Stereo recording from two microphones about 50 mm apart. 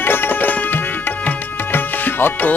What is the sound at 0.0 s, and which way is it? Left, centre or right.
Tabla, left.